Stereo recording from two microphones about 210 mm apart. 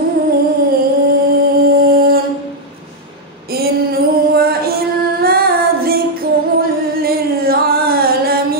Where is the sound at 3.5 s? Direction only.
45° right (ahead or behind).